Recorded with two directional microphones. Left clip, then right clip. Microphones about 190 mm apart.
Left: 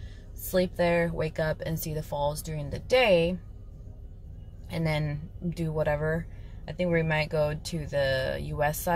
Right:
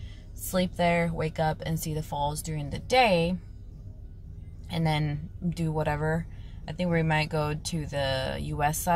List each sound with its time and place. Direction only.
0.4 s a woman's voice: centre (ahead or behind)
4.6 s a woman's voice: centre (ahead or behind)